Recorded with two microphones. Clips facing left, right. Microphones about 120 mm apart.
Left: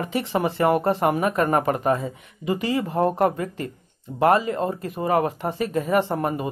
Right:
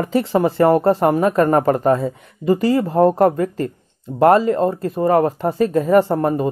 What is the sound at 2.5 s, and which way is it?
Speech, 45° right (ahead or behind).